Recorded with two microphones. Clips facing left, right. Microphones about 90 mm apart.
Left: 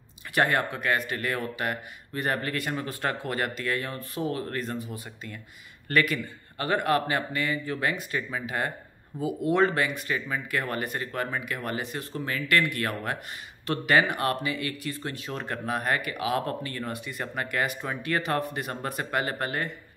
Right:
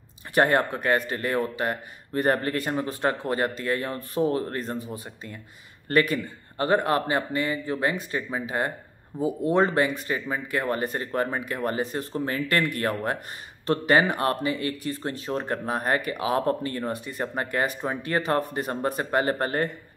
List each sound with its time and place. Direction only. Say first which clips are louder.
0.3 s a man's voice: right 4 dB; 30° right (ahead or behind)